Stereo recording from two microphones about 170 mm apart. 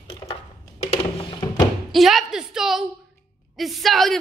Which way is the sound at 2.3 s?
Centre (ahead or behind).